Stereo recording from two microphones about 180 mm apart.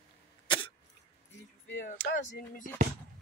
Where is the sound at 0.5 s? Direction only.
25° left (ahead or behind).